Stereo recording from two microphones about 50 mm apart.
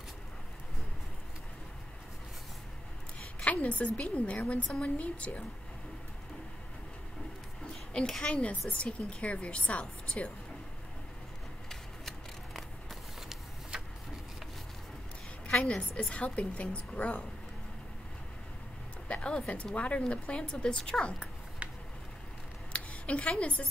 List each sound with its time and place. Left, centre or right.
3.4 s a woman's voice: left
8.1 s a woman's voice: centre
11.7 s scissors: centre
13.3 s vehicle: centre
15.4 s a sound: centre
16.1 s a woman's voice: left
19.0 s a woman's voice: left
22.7 s a woman's voice: left